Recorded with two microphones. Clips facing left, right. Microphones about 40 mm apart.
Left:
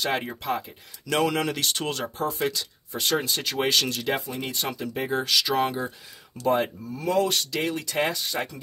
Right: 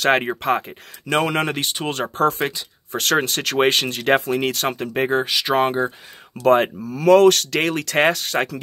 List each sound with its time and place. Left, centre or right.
0.0 s speech: right
1.0 s speech: right
1.6 s speech: centre
2.1 s speech: right
4.1 s speech: right
5.2 s speech: right
5.5 s speech: right
6.4 s speech: right